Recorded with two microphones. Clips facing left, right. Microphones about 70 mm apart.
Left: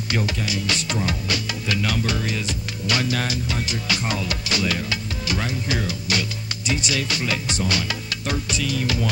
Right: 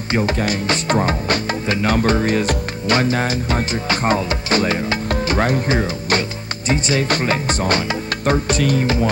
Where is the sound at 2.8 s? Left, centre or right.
Right.